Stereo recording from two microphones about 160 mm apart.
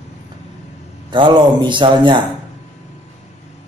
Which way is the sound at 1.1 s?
30° right (ahead or behind).